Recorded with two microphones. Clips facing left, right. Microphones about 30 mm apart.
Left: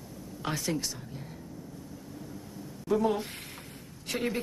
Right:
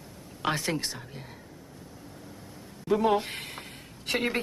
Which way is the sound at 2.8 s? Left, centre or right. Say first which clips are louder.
Right 3 dB; right.